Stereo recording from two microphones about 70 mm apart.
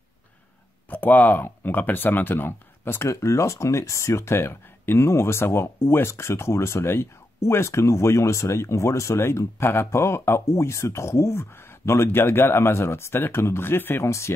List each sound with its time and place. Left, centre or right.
0.8 s speech: left
14.0 s speech: left